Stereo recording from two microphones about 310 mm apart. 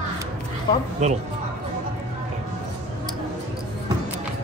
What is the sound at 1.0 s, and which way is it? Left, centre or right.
Speech, right.